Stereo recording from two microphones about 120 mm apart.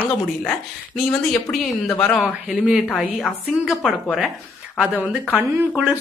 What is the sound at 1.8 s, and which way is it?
Speech, 15° left (ahead or behind).